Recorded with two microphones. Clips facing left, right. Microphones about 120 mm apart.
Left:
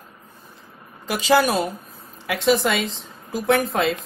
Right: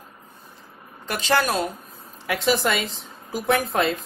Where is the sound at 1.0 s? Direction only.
5° left (ahead or behind).